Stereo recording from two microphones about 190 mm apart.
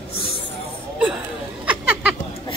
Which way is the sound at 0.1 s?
30° left (ahead or behind).